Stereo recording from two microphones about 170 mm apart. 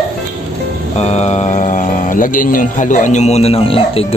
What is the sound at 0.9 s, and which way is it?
Speech, 40° left (ahead or behind).